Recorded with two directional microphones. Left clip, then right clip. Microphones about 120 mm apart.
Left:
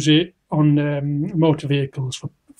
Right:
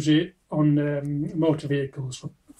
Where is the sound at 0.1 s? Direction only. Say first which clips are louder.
Left 5 dB; 15° left (ahead or behind).